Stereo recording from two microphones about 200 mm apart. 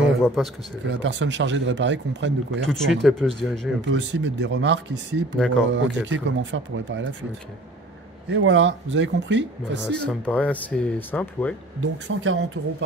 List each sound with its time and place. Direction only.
0.0 s a sound: centre (ahead or behind)
0.8 s speech: 65° right (ahead or behind)
2.7 s speech: centre (ahead or behind)
3.8 s speech: 65° right (ahead or behind)
8.3 s speech: 65° right (ahead or behind)
9.8 s speech: 5° left (ahead or behind)
11.8 s speech: 75° right (ahead or behind)